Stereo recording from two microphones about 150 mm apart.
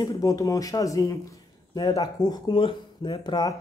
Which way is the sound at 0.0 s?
25° left (ahead or behind).